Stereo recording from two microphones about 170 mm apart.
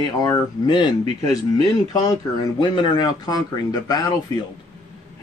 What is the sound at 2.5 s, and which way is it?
Speech, 30° left (ahead or behind).